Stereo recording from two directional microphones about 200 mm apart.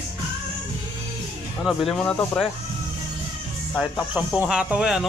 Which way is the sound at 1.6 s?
5° left (ahead or behind).